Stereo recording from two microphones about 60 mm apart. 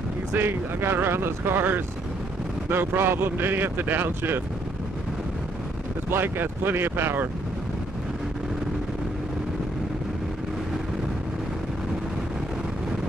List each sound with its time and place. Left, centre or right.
0.4 s speech: right
6.0 s speech: right